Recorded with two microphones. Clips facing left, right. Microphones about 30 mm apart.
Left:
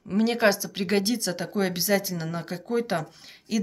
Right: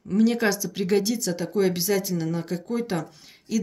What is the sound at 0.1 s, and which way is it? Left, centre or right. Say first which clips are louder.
Speech: even; left.